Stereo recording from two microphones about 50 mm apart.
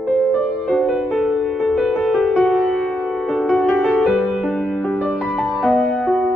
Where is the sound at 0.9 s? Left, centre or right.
Centre.